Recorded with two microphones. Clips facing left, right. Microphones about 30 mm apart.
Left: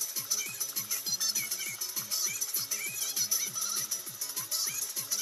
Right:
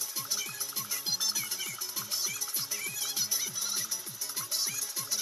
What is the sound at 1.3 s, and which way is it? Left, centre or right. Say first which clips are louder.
Music: right 1 dB; right.